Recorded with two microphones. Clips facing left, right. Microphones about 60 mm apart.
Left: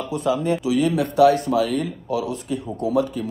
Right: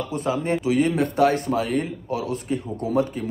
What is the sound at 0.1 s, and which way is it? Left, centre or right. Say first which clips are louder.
Speech: left 4 dB; right.